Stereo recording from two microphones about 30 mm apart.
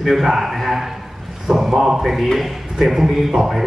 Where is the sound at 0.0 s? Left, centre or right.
Centre.